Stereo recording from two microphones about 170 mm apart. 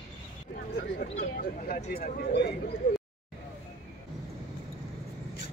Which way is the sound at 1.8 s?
45° left (ahead or behind).